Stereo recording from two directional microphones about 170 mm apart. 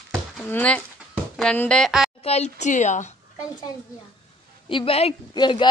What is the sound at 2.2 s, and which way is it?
Speech, 40° left (ahead or behind).